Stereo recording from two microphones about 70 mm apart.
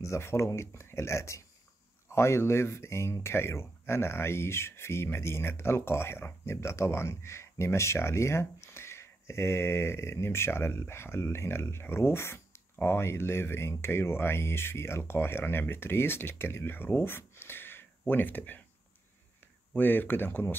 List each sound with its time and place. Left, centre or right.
0.0 s speech: left
17.4 s a sound: left
19.7 s speech: left